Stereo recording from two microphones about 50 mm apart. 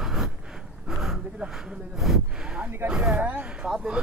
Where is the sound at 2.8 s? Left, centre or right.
Right.